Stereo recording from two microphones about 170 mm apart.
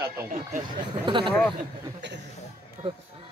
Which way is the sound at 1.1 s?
30° right (ahead or behind).